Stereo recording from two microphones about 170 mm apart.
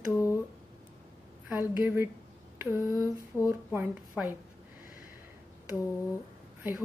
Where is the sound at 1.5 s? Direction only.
10° right (ahead or behind).